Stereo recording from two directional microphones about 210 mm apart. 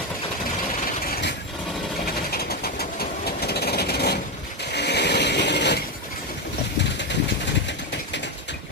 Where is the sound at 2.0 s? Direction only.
45° left (ahead or behind).